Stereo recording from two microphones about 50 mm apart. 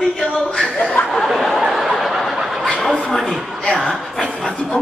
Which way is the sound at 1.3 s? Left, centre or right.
Centre.